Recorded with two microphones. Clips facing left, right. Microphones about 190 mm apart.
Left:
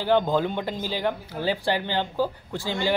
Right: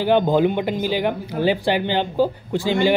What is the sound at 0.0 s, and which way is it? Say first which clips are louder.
Speech: right 5 dB; 15° right (ahead or behind).